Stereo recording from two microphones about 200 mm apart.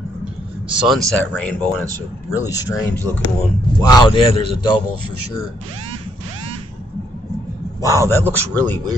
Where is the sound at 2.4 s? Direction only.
15° left (ahead or behind).